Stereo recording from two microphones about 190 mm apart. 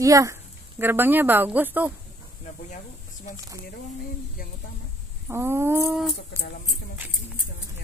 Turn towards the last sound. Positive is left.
turn(degrees=-10)  # may be behind; listen again after turning